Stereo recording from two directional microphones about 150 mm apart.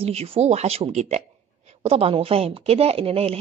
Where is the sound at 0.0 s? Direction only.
40° right (ahead or behind).